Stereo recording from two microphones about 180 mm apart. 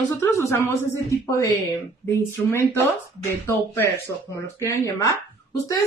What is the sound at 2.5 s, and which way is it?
Speech, 15° left (ahead or behind).